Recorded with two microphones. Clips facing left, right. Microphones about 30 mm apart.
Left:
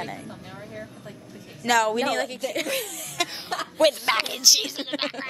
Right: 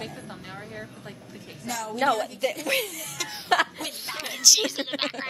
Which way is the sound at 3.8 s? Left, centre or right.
Left.